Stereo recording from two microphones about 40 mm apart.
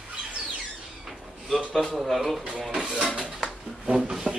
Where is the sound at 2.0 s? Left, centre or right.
Centre.